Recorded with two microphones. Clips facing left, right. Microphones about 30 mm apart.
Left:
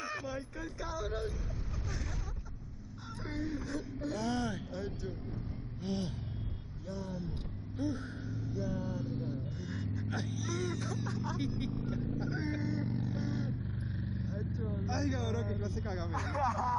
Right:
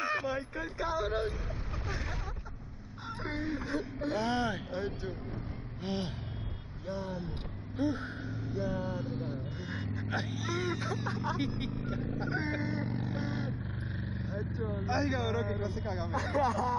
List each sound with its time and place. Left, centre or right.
0.0 s speech: right
3.3 s speech: right
12.2 s vehicle: right
14.6 s speech: centre
14.9 s speech: right
16.2 s speech: right